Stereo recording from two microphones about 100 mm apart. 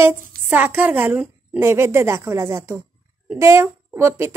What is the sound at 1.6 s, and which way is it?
A child's voice, 25° right (ahead or behind).